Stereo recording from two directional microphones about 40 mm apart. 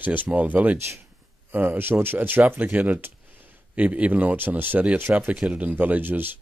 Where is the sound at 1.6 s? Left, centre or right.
Right.